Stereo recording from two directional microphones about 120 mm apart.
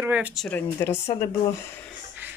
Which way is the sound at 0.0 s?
15° right (ahead or behind).